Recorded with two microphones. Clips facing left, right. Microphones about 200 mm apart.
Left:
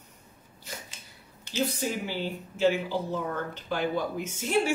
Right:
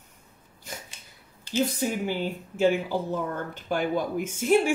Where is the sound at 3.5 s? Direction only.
50° right (ahead or behind).